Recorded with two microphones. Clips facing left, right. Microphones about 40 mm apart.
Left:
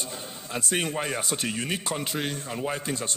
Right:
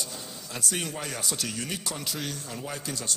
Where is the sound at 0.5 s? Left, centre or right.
Left.